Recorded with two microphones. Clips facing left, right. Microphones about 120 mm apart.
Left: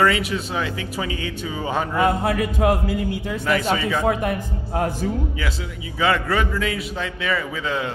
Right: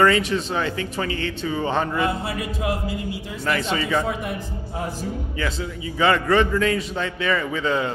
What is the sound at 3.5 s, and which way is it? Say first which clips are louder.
Speech: left 1 dB; 5° left (ahead or behind).